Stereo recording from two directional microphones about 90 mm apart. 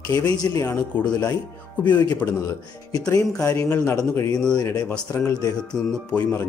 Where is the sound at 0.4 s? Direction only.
35° left (ahead or behind).